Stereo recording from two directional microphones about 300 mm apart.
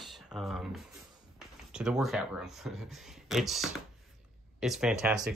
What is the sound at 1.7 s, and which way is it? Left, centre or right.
Speech, centre.